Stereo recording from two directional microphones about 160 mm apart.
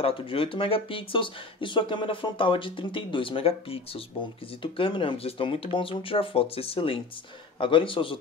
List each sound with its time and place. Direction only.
0.0 s speech: 35° left (ahead or behind)